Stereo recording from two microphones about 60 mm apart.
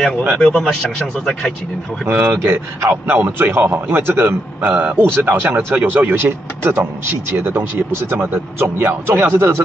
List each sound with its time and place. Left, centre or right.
0.4 s speech: centre
2.0 s speech: right
2.9 s speech: right
4.6 s a man's voice: right